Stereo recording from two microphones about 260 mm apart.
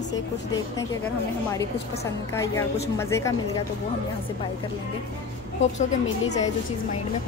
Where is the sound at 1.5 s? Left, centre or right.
Centre.